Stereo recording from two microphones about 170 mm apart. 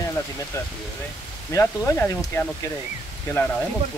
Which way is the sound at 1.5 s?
15° left (ahead or behind).